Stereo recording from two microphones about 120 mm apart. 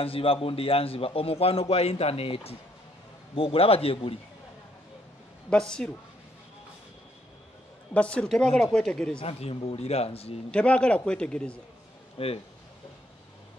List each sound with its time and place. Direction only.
0.0 s a man's voice: 50° left (ahead or behind)
5.5 s a woman's voice: 5° left (ahead or behind)
7.9 s a woman's voice: 10° left (ahead or behind)
9.2 s speech: 55° left (ahead or behind)
10.5 s a woman's voice: 10° left (ahead or behind)
12.2 s a man's voice: 50° left (ahead or behind)